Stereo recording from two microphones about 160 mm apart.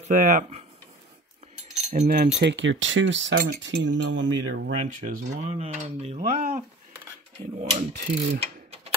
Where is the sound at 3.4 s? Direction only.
90° right.